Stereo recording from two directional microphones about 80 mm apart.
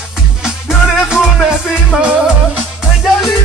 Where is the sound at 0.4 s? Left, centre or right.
Centre.